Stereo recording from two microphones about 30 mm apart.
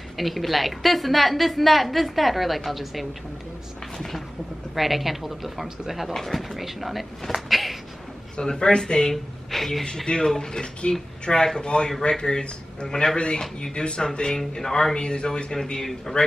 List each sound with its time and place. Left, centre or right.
0.2 s a woman's voice: centre
4.7 s a woman's voice: centre
6.1 s a woman's voice: centre
8.4 s a man's voice: left
9.1 s a woman's voice: centre
10.2 s a man's voice: centre
15.0 s a man's voice: left
16.1 s speech: left